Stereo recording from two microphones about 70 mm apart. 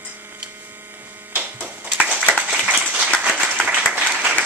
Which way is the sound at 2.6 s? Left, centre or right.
Centre.